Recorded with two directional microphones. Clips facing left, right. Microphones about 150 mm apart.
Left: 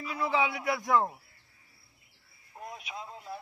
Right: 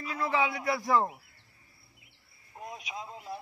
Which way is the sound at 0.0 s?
Centre (ahead or behind).